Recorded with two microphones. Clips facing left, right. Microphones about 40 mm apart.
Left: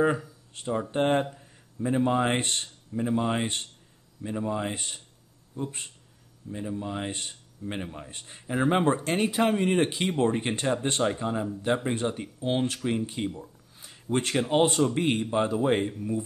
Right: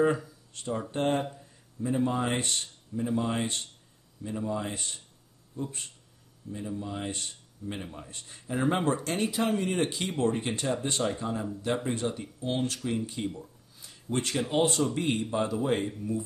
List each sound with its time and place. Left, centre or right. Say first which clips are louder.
0.0 s speech: left 1 dB; centre; by 11.1 s left
11.1 s speech: left 3 dB; left
13.4 s a sound: left 2 dB; left
14.5 s speech: left 4 dB; left